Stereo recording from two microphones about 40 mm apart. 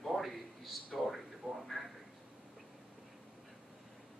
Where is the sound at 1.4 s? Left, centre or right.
Right.